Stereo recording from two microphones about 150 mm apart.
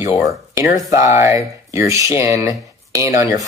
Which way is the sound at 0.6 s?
20° right (ahead or behind).